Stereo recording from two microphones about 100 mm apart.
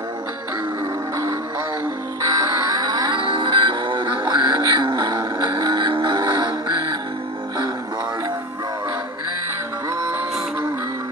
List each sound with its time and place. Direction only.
2.2 s music: 40° right (ahead or behind)
5.1 s vehicle: 35° right (ahead or behind)
6.2 s music: 35° right (ahead or behind)